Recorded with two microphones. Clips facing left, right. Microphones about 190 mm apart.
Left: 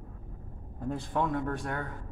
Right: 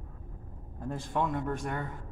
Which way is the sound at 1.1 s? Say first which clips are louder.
Even; centre (ahead or behind).